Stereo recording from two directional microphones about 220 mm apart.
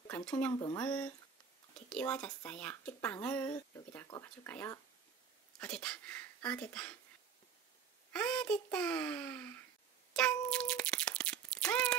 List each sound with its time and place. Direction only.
0.0 s speech: 5° left (ahead or behind)
0.6 s speech: 20° left (ahead or behind)
0.8 s speech: 5° left (ahead or behind)
8.1 s a child's voice: 5° left (ahead or behind)
10.1 s a sound: 5° left (ahead or behind)